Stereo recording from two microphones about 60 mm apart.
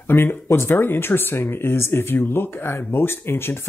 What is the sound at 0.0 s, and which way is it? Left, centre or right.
Speech, left.